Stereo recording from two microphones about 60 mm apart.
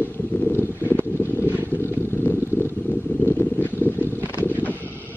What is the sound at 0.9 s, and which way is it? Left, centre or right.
Vehicle, left.